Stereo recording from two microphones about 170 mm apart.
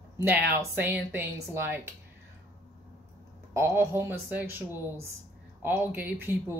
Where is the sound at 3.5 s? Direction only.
15° right (ahead or behind).